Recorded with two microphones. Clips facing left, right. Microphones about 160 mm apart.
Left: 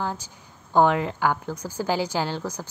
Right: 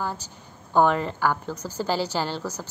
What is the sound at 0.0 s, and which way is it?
A woman's voice, 15° left (ahead or behind).